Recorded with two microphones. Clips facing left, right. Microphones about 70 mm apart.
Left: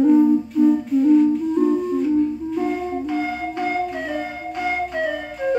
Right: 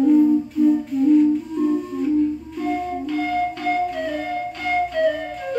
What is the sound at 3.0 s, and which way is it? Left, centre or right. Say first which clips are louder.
Music: right 2 dB; centre.